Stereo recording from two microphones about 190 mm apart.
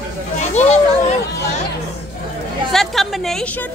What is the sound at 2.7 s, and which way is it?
Speech, centre (ahead or behind).